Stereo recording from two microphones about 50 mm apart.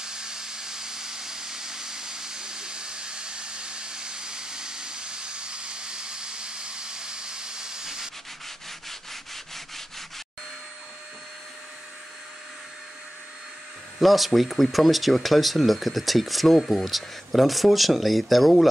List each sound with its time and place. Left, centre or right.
0.0 s vehicle: centre
8.8 s sanding: centre
13.9 s speech: centre